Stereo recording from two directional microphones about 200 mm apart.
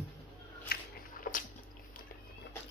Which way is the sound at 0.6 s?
45° left (ahead or behind).